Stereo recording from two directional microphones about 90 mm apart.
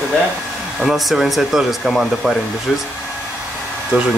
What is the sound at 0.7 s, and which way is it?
Speech, centre (ahead or behind).